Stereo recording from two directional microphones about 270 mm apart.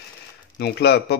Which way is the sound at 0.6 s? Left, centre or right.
Left.